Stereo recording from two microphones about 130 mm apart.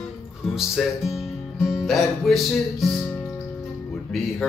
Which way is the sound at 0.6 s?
5° right (ahead or behind).